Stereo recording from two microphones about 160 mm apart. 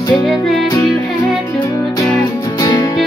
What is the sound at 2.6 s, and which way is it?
Music, 25° left (ahead or behind).